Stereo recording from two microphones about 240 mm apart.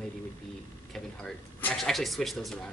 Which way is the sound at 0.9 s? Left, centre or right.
Centre.